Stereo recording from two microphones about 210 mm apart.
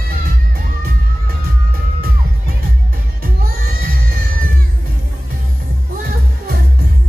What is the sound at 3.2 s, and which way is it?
Music, 45° right (ahead or behind).